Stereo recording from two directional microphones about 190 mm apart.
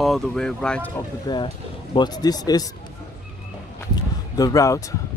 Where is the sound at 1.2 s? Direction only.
25° left (ahead or behind).